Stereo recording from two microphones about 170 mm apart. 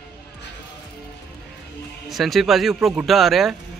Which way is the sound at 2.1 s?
Centre (ahead or behind).